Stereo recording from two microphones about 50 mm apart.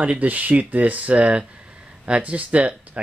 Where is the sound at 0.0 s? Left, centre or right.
Right.